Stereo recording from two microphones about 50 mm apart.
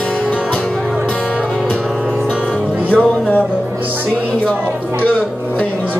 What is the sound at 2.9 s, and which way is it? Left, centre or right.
Music, left.